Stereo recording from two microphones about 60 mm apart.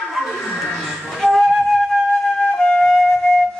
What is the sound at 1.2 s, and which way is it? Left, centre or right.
Flute, centre.